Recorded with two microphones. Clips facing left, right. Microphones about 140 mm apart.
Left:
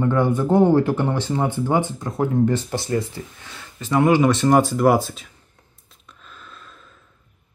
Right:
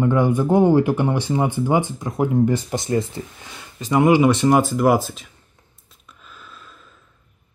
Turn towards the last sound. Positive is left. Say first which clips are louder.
# even
turn(degrees=-5)  # may be behind; listen again after turning